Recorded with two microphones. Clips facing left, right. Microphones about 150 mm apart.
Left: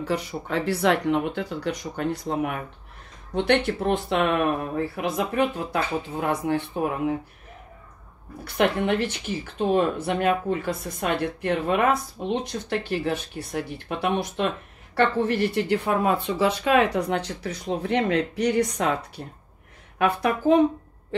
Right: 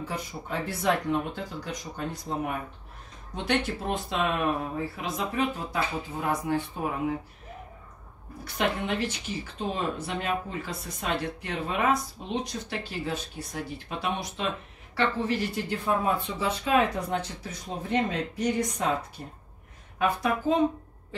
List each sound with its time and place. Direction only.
0.1 s speech: 75° left (ahead or behind)
8.5 s speech: 60° left (ahead or behind)